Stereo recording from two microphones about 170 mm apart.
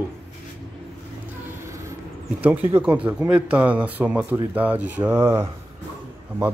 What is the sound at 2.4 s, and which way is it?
Speech, 10° right (ahead or behind).